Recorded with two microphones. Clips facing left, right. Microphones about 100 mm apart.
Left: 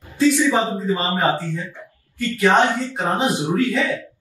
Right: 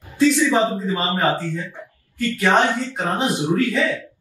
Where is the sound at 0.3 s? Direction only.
20° left (ahead or behind).